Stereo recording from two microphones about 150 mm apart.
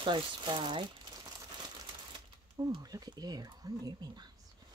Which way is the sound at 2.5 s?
25° right (ahead or behind).